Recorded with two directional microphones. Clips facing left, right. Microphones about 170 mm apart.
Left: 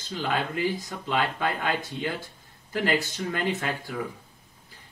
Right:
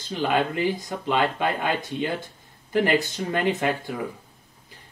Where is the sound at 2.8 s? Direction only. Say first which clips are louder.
Right 2 dB; 20° right (ahead or behind).